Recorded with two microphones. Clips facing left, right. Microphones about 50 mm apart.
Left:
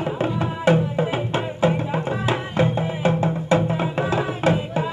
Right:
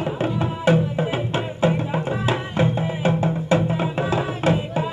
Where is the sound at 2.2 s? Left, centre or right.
Left.